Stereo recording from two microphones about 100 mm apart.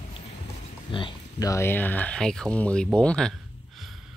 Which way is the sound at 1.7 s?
15° left (ahead or behind).